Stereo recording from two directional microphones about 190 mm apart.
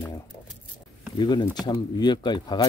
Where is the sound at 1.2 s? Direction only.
25° left (ahead or behind).